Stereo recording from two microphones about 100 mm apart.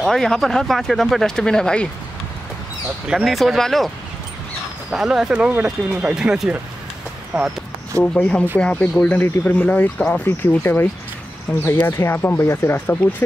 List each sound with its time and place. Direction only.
0.0 s speech: 5° left (ahead or behind)
3.1 s speech: centre (ahead or behind)
4.9 s speech: 5° right (ahead or behind)
8.0 s speech: 10° left (ahead or behind)
12.0 s speech: 25° left (ahead or behind)